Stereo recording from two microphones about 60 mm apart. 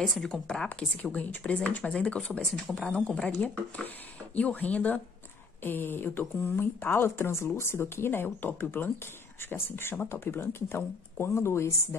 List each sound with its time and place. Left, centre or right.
0.3 s speech: centre
5.6 s speech: left